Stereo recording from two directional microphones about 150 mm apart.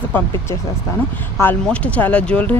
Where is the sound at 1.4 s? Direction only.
10° left (ahead or behind).